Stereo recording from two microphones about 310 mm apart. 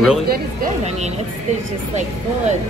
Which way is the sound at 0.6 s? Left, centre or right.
Right.